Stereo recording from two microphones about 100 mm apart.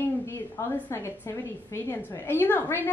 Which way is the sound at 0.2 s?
30° left (ahead or behind).